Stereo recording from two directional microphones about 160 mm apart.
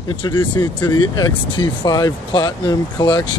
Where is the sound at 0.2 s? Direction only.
30° left (ahead or behind).